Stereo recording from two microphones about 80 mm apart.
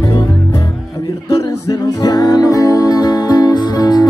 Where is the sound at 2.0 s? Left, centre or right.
Left.